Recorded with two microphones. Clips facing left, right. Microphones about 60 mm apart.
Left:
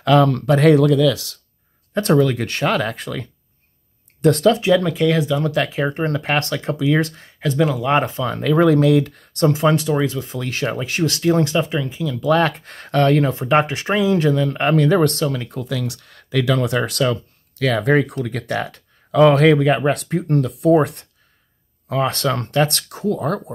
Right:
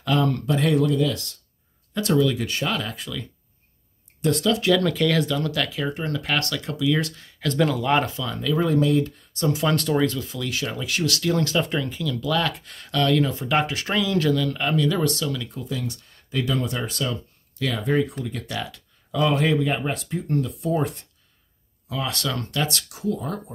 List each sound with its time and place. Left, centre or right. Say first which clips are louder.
0.0 s speech: left 8 dB; left
2.0 s speech: left 5 dB; left
4.6 s speech: left 4 dB; centre
5.4 s speech: left 6 dB; left
7.4 s speech: left 3 dB; centre
7.9 s speech: left 4 dB; left
8.3 s speech: left 10 dB; left
9.8 s speech: left 2 dB; centre
10.2 s speech: left 5 dB; left
11.6 s speech: left 3 dB; centre
12.2 s speech: left 9 dB; left
14.6 s speech: left 7 dB; left
15.6 s speech: left 5 dB; left
21.8 s speech: left 8 dB; left